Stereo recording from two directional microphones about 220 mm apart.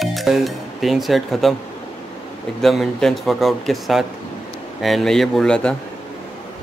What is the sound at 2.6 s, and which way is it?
Speech, centre (ahead or behind).